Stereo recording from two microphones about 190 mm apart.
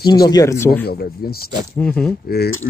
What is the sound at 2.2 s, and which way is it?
Speech, 55° left (ahead or behind).